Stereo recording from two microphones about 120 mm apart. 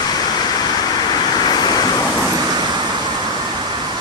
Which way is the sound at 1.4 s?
35° left (ahead or behind).